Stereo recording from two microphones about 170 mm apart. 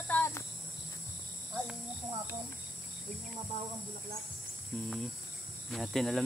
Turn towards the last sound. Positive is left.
turn(degrees=0)  # may be behind; listen again after turning